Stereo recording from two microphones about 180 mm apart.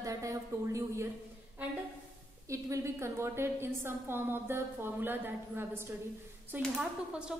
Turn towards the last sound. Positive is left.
turn(degrees=-5)  # may be behind; listen again after turning